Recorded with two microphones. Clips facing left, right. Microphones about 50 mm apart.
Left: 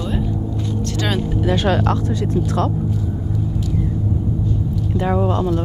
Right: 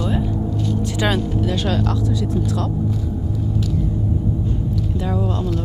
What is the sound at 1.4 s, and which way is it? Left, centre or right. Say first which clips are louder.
Speech: left 3 dB; left.